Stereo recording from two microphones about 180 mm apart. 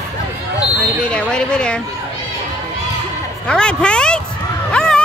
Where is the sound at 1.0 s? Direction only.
5° left (ahead or behind).